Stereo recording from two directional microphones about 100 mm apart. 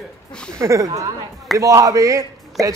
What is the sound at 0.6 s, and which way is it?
Speech, 35° right (ahead or behind).